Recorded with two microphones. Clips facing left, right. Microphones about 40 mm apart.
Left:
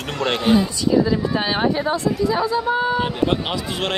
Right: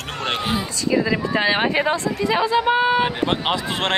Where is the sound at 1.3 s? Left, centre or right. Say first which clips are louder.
Right 1 dB; right.